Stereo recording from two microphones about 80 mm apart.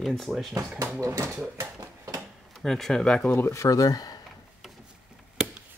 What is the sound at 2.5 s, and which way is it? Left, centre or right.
Speech, centre.